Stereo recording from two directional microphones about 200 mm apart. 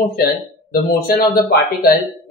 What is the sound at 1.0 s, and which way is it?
Speech, 50° left (ahead or behind).